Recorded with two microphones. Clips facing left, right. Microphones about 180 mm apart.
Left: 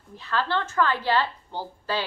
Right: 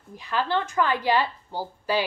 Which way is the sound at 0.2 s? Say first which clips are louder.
Right 1 dB; 15° right (ahead or behind).